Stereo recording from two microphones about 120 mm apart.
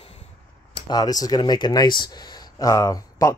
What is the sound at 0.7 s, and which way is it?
Speech, 35° left (ahead or behind).